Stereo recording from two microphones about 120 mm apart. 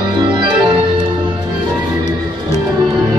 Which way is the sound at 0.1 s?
40° right (ahead or behind).